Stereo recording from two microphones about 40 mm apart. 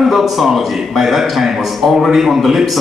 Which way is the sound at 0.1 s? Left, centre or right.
Centre.